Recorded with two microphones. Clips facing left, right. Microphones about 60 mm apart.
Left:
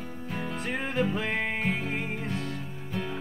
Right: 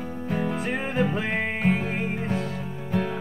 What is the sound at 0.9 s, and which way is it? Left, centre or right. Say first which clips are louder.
Music: right 2 dB; centre.